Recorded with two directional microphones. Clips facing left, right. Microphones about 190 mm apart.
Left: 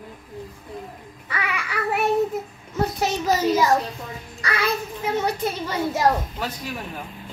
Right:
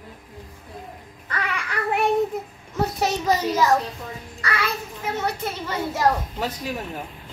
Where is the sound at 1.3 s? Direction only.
10° left (ahead or behind).